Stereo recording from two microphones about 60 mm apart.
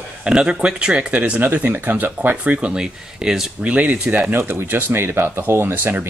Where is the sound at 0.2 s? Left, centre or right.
Centre.